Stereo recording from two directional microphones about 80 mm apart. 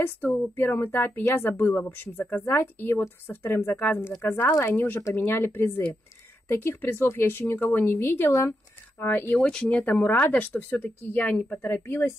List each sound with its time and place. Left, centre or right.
0.6 s speech: left
8.3 s speech: left
9.0 s speech: left
9.4 s speech: centre